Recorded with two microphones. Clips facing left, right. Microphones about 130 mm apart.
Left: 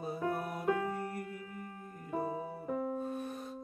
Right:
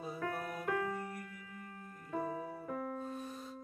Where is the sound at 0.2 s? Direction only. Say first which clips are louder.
Left 4 dB; 20° left (ahead or behind).